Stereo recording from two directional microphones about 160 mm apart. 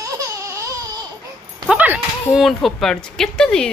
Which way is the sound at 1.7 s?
5° right (ahead or behind).